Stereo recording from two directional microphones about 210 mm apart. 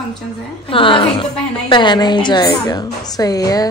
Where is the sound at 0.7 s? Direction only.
25° left (ahead or behind).